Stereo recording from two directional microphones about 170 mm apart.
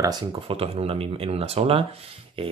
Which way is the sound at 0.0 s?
25° right (ahead or behind).